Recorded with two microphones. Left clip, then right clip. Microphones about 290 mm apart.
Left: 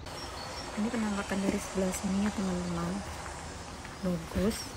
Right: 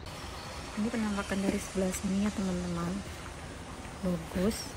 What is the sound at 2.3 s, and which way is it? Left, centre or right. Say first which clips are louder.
Speech: left 1 dB; left.